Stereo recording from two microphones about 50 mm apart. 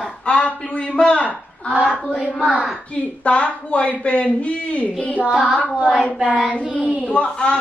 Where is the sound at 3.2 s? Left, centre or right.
Left.